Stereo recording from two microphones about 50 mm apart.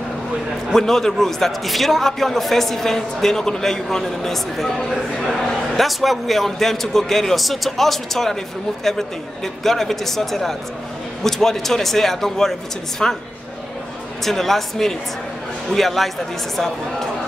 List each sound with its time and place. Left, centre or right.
0.7 s a man's voice: centre
14.2 s a man's voice: centre